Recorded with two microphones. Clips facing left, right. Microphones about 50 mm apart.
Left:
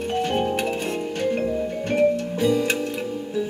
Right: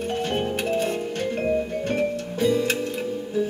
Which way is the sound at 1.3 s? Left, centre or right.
Centre.